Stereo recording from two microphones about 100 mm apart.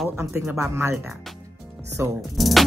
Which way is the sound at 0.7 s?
25° right (ahead or behind).